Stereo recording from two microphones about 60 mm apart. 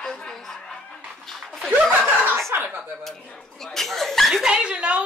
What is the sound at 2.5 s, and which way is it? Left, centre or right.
Speech, right.